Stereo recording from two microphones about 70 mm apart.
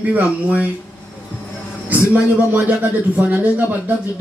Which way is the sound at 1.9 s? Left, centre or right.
Right.